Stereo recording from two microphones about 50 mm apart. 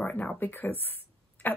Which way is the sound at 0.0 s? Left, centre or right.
Left.